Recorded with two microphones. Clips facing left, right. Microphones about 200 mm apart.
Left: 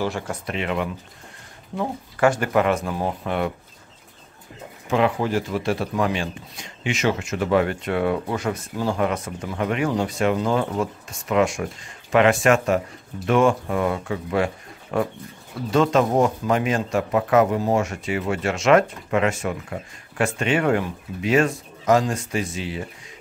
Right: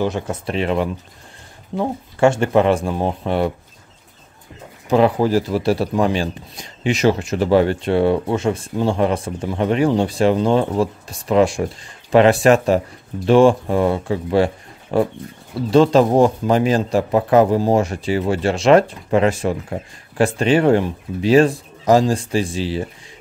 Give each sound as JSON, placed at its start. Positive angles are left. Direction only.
{"t": 0.0, "sound": "speech", "side_deg": -20}
{"t": 0.5, "sound": "speech", "side_deg": -35}
{"t": 4.8, "sound": "speech", "side_deg": -35}